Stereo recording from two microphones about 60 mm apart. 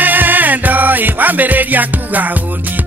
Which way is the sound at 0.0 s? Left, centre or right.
Right.